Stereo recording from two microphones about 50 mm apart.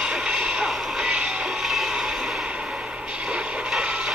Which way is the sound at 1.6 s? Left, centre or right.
Centre.